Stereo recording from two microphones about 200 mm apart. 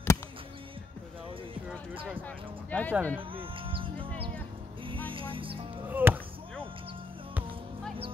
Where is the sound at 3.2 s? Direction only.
25° right (ahead or behind).